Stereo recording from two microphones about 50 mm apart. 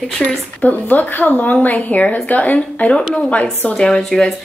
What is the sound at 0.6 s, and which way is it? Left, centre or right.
A woman's voice, left.